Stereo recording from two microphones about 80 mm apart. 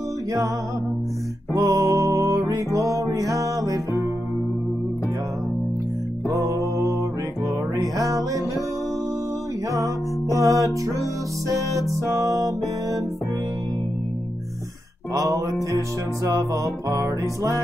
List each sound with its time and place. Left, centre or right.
1.5 s music: right
6.2 s music: right
9.7 s music: right
15.1 s music: right